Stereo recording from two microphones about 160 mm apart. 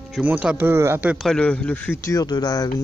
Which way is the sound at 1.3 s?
5° left (ahead or behind).